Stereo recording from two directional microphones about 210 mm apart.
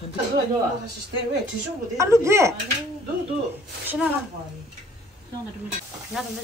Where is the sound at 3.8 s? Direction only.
10° right (ahead or behind).